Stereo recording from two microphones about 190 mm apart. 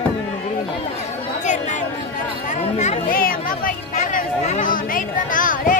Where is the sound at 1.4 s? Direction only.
40° left (ahead or behind).